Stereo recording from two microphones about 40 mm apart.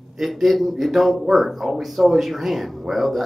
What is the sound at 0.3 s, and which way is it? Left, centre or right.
Speech, centre.